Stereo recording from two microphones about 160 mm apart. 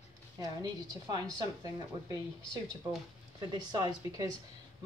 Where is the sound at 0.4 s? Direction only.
25° right (ahead or behind).